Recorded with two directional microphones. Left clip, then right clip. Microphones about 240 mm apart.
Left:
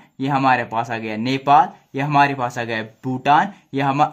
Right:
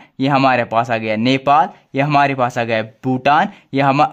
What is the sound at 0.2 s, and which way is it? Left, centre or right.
Speech, right.